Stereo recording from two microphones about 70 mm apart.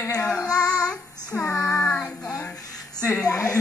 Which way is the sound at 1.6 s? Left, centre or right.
Centre.